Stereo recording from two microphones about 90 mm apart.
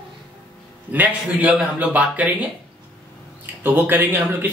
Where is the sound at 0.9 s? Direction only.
20° right (ahead or behind).